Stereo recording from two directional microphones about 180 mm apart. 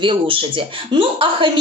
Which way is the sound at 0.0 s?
30° right (ahead or behind).